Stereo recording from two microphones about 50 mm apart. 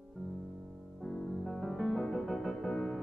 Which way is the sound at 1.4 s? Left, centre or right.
Centre.